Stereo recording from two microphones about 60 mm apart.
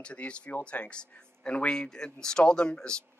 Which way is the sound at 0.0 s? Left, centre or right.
Centre.